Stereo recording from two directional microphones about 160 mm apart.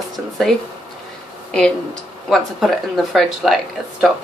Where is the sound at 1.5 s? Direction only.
5° left (ahead or behind).